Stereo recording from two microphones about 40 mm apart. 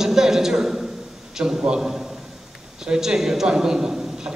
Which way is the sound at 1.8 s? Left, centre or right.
Centre.